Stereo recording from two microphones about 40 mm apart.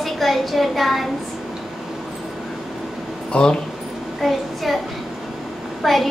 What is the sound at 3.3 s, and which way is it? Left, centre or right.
Speech, left.